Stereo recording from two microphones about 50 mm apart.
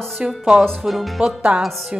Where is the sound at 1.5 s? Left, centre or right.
Right.